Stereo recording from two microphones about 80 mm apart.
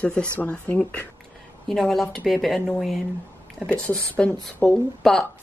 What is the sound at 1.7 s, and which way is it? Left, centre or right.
Speech, centre.